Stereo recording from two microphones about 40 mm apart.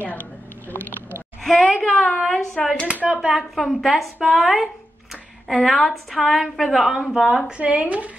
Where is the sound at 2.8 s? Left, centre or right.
Right.